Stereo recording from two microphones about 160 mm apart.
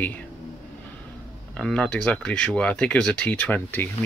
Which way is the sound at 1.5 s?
5° left (ahead or behind).